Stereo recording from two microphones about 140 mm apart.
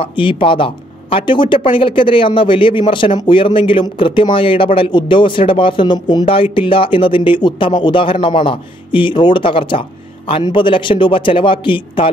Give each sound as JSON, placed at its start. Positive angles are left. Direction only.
{"t": 0.0, "sound": "speech", "side_deg": 35}